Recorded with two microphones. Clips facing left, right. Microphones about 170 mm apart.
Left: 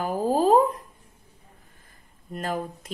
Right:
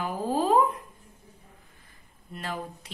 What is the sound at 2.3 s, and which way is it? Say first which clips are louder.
Speech: left 6 dB; 45° left (ahead or behind).